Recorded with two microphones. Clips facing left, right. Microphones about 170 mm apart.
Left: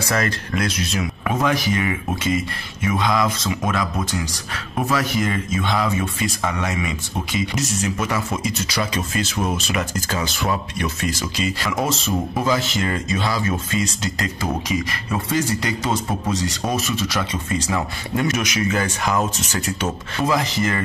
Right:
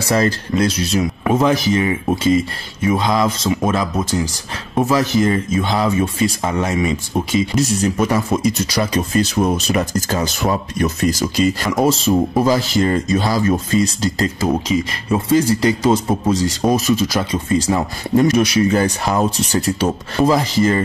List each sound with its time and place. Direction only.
0.0 s speech: 30° right (ahead or behind)